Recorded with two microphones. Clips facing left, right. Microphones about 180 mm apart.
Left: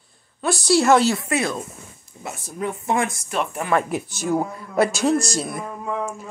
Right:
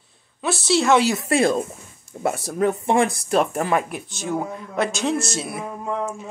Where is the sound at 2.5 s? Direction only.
45° right (ahead or behind).